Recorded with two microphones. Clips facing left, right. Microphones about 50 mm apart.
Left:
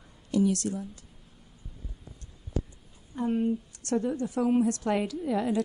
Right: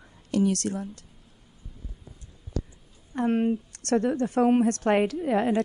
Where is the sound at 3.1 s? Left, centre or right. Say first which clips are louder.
Right 3 dB; right.